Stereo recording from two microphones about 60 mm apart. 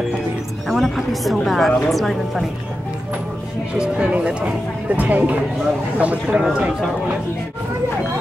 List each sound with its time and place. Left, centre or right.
0.7 s a woman's voice: centre
3.7 s speech: centre